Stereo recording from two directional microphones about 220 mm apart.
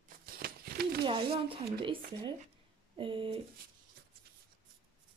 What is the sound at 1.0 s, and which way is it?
Speech, 25° right (ahead or behind).